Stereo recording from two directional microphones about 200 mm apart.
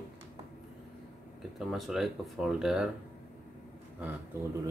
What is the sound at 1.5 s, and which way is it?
Speech, centre (ahead or behind).